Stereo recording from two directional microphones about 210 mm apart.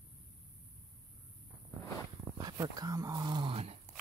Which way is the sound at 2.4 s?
20° right (ahead or behind).